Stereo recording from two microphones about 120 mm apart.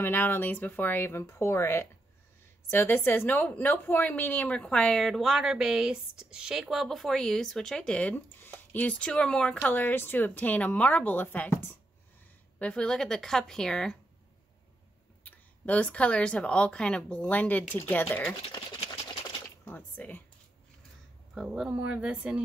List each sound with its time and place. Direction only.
0.0 s a woman's voice: 20° left (ahead or behind)
15.2 s a woman's voice: 10° left (ahead or behind)
19.6 s a sound: 15° left (ahead or behind)
21.4 s speech: 5° right (ahead or behind)